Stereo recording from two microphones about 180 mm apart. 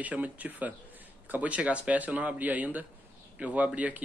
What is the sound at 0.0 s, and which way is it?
Speech, 10° right (ahead or behind).